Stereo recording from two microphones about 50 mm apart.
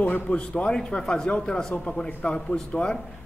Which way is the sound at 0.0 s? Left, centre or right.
Left.